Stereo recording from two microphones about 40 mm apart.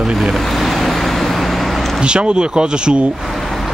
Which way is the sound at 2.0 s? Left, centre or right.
Right.